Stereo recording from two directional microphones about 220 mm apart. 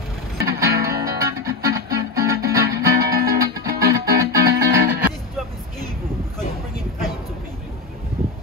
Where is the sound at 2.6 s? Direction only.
45° right (ahead or behind).